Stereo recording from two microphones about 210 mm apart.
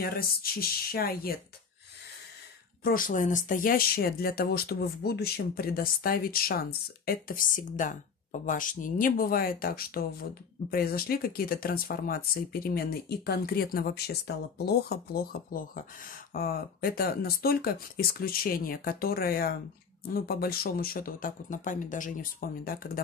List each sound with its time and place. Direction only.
0.0 s speech: 45° left (ahead or behind)
2.8 s speech: 40° left (ahead or behind)